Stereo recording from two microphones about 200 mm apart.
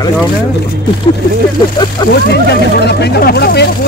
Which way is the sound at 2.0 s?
20° left (ahead or behind).